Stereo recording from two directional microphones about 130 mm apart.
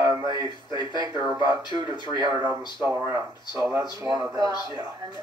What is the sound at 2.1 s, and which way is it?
A woman's voice, 35° right (ahead or behind).